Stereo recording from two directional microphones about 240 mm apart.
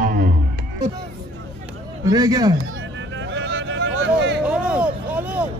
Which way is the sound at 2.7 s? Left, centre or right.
Right.